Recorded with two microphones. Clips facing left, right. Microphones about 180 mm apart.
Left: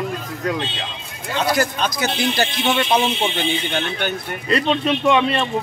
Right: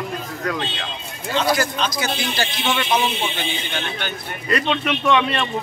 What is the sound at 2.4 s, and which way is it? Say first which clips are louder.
Speech: left 3 dB; 40° left (ahead or behind).